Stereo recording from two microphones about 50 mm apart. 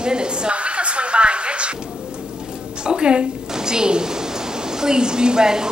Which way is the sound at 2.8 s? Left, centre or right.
Centre.